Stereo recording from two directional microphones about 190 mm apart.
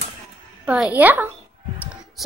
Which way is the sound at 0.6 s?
5° right (ahead or behind).